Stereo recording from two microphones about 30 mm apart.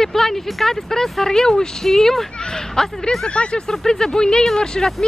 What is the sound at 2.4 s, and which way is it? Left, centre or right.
Speech, left.